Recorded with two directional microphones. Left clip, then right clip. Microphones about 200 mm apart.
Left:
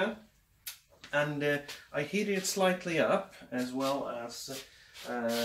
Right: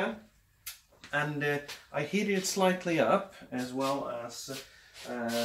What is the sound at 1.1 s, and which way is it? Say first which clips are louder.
Speech: left 1 dB; 5° right (ahead or behind).